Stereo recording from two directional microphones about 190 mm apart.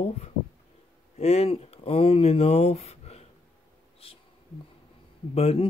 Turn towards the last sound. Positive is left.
turn(degrees=30)  # may be behind; listen again after turning